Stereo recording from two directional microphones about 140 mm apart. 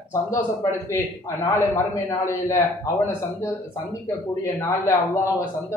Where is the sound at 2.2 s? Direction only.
20° left (ahead or behind).